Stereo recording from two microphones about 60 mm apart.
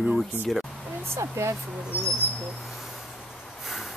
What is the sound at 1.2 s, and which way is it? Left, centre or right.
Speech, right.